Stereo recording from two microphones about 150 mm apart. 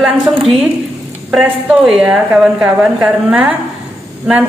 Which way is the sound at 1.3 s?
5° right (ahead or behind).